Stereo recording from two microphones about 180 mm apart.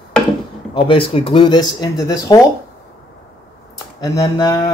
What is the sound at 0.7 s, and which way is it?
Speech, 30° left (ahead or behind).